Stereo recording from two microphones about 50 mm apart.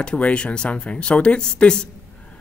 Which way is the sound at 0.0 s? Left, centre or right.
Centre.